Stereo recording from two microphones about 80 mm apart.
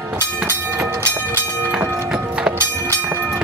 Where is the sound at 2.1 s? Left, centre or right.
Centre.